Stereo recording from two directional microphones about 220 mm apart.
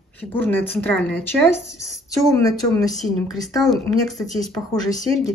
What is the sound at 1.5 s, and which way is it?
Speech, 30° left (ahead or behind).